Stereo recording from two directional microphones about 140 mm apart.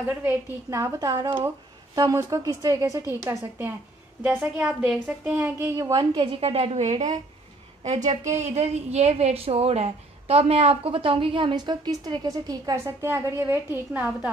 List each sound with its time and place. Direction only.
0.0 s a woman's voice: 15° right (ahead or behind)